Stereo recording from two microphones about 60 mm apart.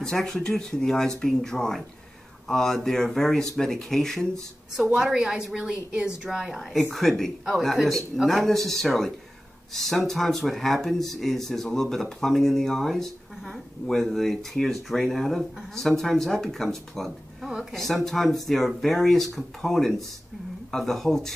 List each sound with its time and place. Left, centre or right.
0.0 s speech: centre
4.9 s a woman's voice: centre